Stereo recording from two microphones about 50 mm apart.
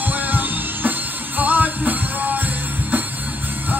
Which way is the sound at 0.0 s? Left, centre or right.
Right.